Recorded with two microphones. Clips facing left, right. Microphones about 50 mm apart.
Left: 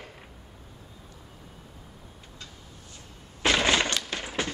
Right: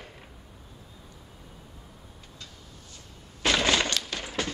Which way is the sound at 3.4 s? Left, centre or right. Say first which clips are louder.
Left 1 dB; centre.